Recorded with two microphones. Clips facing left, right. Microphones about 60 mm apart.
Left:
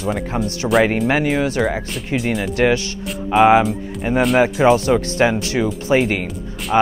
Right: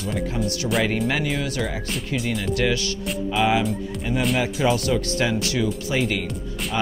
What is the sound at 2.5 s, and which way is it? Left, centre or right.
Speech, left.